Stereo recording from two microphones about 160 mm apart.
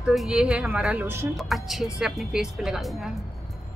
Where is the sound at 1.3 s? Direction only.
Centre (ahead or behind).